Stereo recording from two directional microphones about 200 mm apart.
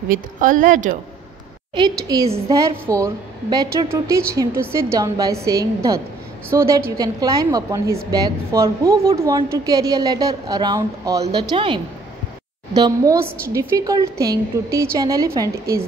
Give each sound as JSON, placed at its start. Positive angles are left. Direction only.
{"t": 0.1, "sound": "a woman's voice", "side_deg": -40}
{"t": 2.2, "sound": "speech", "side_deg": -30}
{"t": 2.9, "sound": "a woman's voice", "side_deg": -15}